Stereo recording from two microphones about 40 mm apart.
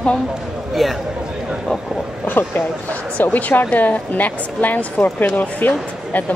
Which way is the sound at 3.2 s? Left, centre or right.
Left.